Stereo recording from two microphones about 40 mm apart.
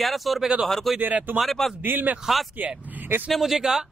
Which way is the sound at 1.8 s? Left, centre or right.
Right.